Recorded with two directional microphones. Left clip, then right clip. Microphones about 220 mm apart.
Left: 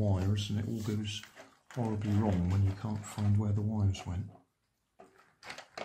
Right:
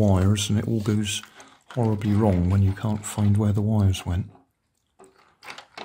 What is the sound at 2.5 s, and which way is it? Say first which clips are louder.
Speech: right 11 dB; 50° right (ahead or behind).